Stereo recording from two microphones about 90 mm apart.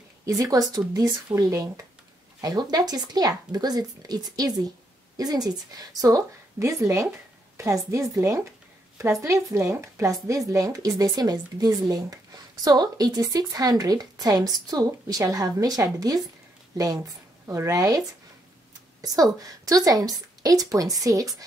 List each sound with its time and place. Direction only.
0.2 s a woman's voice: 40° right (ahead or behind)